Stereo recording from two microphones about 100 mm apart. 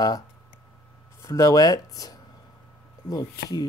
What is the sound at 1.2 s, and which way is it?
Speech, 30° left (ahead or behind).